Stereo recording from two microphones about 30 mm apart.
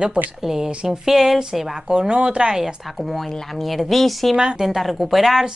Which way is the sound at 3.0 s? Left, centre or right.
Centre.